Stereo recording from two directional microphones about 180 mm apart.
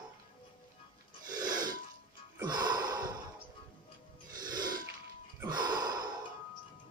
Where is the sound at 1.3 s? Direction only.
20° right (ahead or behind).